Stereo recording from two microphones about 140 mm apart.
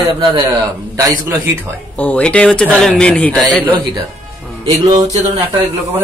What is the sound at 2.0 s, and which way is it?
A man's voice, 10° left (ahead or behind).